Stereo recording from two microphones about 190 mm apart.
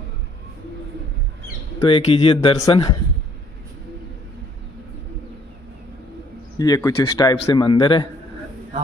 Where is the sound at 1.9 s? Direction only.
30° left (ahead or behind).